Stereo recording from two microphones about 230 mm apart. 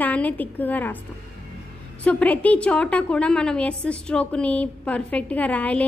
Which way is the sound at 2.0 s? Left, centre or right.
Centre.